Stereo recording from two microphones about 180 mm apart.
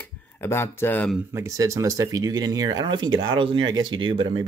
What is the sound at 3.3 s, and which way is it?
Speech, 25° right (ahead or behind).